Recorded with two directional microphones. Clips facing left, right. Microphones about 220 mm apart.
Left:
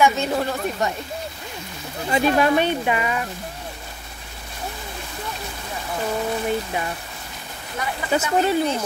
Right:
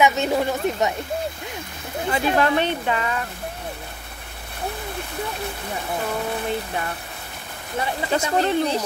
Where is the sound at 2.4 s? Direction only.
10° left (ahead or behind).